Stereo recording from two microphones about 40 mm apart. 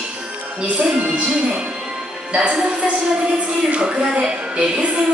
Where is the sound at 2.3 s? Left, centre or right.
Right.